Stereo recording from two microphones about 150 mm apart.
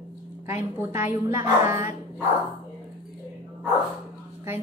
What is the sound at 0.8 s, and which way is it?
A woman's voice, 15° right (ahead or behind).